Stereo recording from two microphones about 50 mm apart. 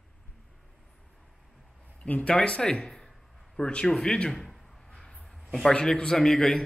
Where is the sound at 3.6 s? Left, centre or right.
Centre.